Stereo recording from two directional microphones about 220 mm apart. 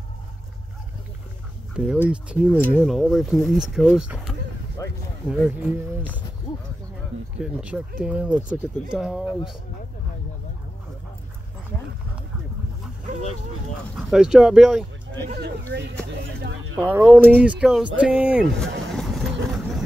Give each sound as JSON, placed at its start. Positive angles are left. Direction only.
{"t": 1.8, "sound": "speech", "side_deg": -5}
{"t": 4.8, "sound": "speech", "side_deg": 15}
{"t": 5.2, "sound": "speech", "side_deg": -5}
{"t": 7.3, "sound": "speech", "side_deg": -5}
{"t": 13.9, "sound": "speech", "side_deg": 0}
{"t": 15.7, "sound": "music", "side_deg": -50}
{"t": 16.7, "sound": "speech", "side_deg": -10}
{"t": 17.9, "sound": "vehicle", "side_deg": -5}